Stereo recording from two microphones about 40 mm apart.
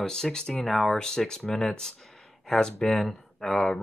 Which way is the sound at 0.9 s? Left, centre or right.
Centre.